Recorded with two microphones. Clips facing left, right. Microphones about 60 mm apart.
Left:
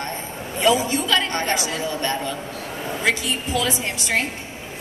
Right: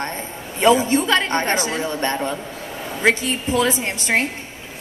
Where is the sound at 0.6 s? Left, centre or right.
Right.